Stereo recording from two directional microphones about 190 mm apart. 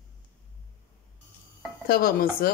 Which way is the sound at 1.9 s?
50° left (ahead or behind).